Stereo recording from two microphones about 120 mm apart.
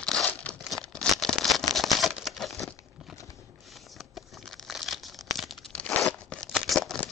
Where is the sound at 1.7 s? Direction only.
Centre (ahead or behind).